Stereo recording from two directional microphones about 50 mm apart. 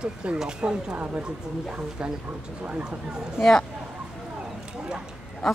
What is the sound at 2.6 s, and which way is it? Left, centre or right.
Speech, right.